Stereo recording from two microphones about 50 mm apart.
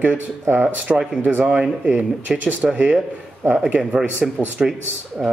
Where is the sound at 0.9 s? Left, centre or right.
Centre.